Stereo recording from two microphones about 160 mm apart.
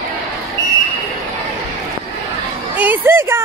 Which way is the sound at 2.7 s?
10° right (ahead or behind).